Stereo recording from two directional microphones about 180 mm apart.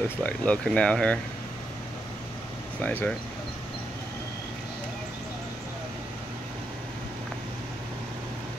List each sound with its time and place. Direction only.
0.2 s speech: 5° left (ahead or behind)
2.8 s speech: 10° left (ahead or behind)